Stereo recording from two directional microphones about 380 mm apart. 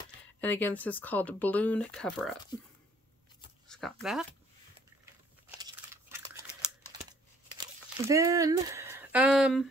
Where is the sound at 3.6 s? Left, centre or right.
Centre.